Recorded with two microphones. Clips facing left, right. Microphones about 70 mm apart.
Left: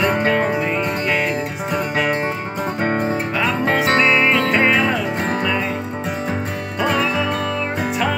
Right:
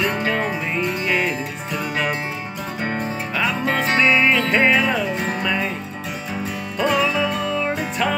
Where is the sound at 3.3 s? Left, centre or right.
Centre.